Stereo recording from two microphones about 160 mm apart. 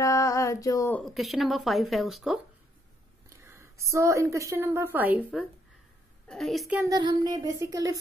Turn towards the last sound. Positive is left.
turn(degrees=-20)  # may be behind; listen again after turning